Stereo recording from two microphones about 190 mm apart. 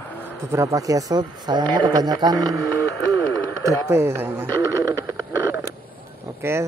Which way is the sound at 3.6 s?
15° right (ahead or behind).